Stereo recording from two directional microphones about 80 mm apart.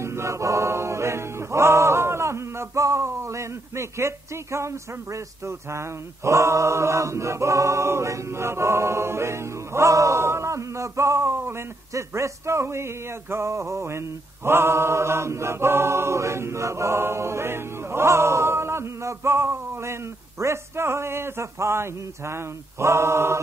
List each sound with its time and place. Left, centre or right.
0.0 s choir: right
5.7 s mantra: right